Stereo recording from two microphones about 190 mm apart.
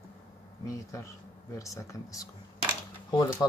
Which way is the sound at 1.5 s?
15° left (ahead or behind).